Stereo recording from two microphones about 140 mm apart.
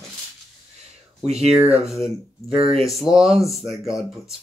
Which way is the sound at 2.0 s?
45° right (ahead or behind).